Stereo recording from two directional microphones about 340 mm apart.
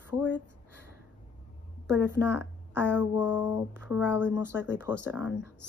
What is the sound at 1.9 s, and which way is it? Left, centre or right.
A woman's voice, centre.